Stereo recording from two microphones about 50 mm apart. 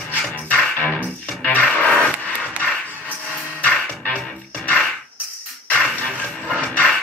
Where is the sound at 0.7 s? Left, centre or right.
Left.